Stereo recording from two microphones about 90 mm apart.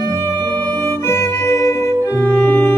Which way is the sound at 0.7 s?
25° left (ahead or behind).